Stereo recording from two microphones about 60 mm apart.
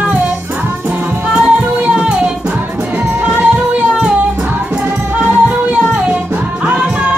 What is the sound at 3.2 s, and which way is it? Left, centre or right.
Music, right.